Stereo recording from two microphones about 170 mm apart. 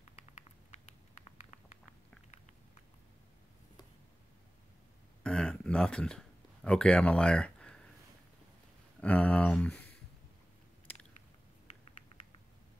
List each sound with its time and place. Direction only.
0.1 s patter: 40° left (ahead or behind)
5.2 s a sound: 5° left (ahead or behind)
9.0 s speech: 10° left (ahead or behind)